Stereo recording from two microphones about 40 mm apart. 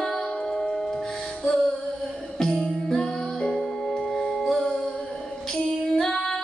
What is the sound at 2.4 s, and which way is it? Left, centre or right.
Music, centre.